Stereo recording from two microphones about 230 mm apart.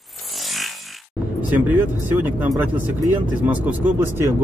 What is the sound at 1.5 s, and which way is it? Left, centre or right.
Speech, centre.